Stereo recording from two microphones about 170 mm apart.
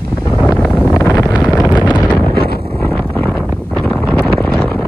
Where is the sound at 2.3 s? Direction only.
65° right (ahead or behind).